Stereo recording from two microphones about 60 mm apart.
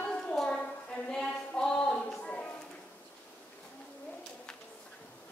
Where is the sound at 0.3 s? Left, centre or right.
Centre.